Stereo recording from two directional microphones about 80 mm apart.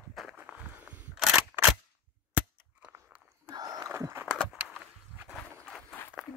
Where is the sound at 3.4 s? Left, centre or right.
Right.